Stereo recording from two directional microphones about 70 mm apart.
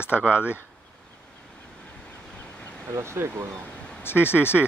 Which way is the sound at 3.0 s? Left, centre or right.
Right.